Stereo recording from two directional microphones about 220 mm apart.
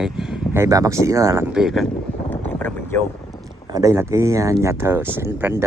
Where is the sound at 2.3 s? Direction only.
5° left (ahead or behind).